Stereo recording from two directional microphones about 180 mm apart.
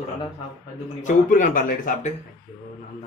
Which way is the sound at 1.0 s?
45° left (ahead or behind).